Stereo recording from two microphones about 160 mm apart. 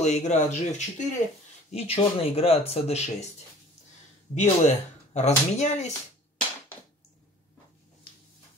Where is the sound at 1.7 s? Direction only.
40° left (ahead or behind).